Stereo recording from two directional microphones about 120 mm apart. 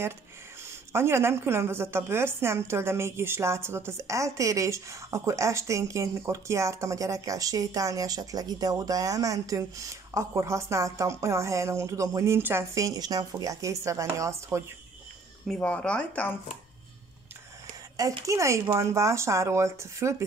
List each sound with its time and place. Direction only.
0.9 s a woman's voice: 20° right (ahead or behind)
15.4 s speech: 5° left (ahead or behind)
18.2 s a woman's voice: 25° right (ahead or behind)